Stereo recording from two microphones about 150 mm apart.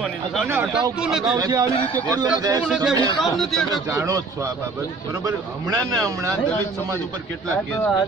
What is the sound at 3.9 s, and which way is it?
A man's voice, 20° right (ahead or behind).